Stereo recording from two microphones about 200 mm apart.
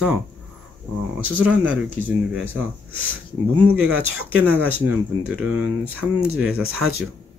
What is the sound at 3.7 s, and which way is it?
Speech, 90° right.